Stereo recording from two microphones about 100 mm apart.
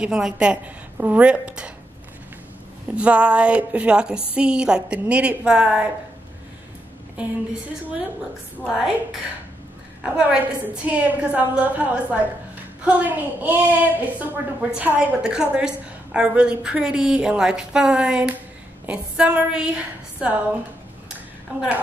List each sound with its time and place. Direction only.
0.0 s a woman's voice: 5° right (ahead or behind)
3.0 s a woman's voice: 10° right (ahead or behind)
8.7 s a woman's voice: 5° right (ahead or behind)
21.5 s a woman's voice: 15° right (ahead or behind)